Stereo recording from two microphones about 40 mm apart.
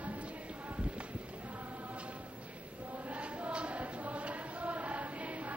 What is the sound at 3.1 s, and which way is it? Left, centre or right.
Chant, right.